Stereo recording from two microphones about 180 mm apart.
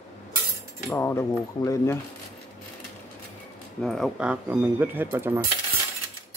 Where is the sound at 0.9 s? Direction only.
15° left (ahead or behind).